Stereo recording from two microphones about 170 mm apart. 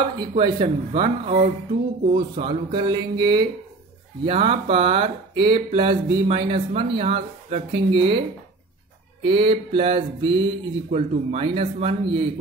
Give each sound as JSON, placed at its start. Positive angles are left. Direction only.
{"t": 0.3, "sound": "speech", "side_deg": -35}
{"t": 2.1, "sound": "speech", "side_deg": -30}
{"t": 4.3, "sound": "speech", "side_deg": -35}
{"t": 9.2, "sound": "speech", "side_deg": -30}